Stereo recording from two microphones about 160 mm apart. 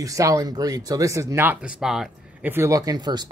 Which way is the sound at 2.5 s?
20° right (ahead or behind).